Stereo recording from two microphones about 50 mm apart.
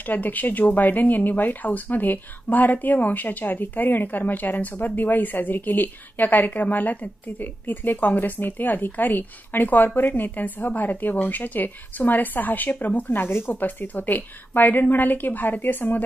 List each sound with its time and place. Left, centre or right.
0.0 s speech: left
13.5 s speech: left